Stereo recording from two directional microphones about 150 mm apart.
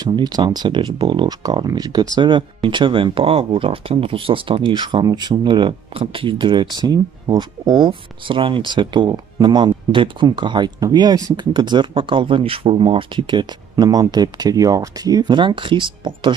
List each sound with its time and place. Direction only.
0.0 s speech: 25° right (ahead or behind)